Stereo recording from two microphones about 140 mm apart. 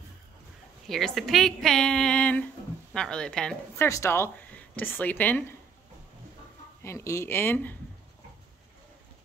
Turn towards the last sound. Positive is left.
turn(degrees=15)  # may be behind; listen again after turning